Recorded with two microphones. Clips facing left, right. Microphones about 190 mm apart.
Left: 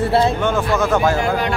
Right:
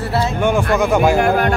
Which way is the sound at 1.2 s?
55° right (ahead or behind).